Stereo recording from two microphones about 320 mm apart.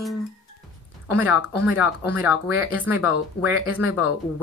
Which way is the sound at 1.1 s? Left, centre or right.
Centre.